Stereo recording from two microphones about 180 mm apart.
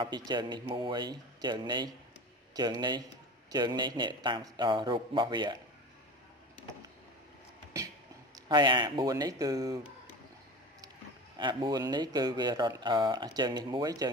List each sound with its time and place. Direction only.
0.3 s speech: 25° right (ahead or behind)
8.5 s speech: 25° right (ahead or behind)
11.3 s speech: 25° right (ahead or behind)